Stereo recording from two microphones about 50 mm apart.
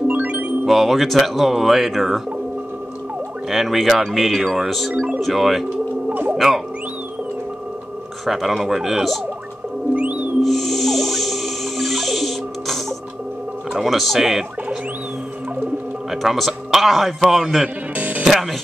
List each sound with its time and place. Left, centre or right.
0.7 s a man's voice: centre
3.4 s a man's voice: centre
4.9 s speech: right
5.2 s a man's voice: centre
8.3 s a man's voice: centre
9.9 s music: right
10.4 s snake: centre
13.7 s a man's voice: centre
16.1 s a man's voice: centre
17.9 s music: right